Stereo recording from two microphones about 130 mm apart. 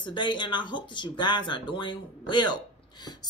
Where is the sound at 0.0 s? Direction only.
35° left (ahead or behind).